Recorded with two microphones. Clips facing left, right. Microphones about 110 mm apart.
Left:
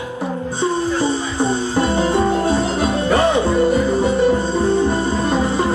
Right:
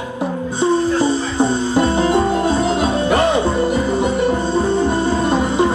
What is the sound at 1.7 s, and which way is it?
Music, 20° right (ahead or behind).